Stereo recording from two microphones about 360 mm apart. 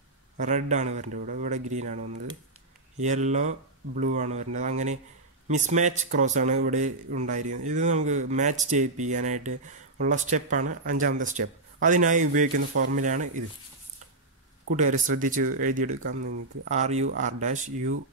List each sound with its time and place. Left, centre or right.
0.4 s a man's voice: centre
14.7 s a man's voice: right